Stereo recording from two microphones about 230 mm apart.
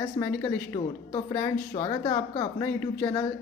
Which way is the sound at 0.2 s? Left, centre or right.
Centre.